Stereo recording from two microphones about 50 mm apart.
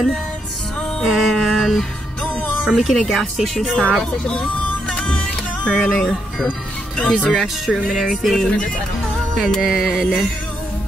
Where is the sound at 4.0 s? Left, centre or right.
Centre.